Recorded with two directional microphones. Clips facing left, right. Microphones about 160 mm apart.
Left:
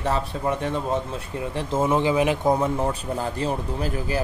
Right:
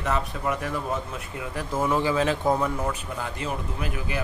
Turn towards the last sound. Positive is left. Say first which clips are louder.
# left 5 dB
turn(degrees=35)  # may be behind; listen again after turning